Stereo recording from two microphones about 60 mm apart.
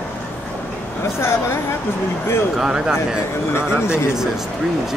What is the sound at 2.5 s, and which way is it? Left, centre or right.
Speech, centre.